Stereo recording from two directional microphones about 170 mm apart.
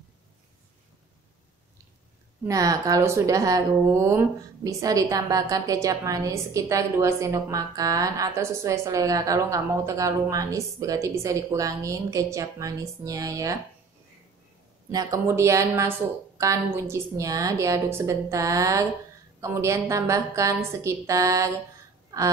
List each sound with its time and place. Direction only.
2.4 s a woman's voice: 20° right (ahead or behind)
14.9 s a woman's voice: 20° right (ahead or behind)